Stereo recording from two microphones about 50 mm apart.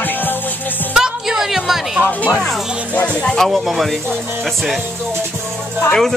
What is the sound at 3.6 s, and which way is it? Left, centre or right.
Speech, centre.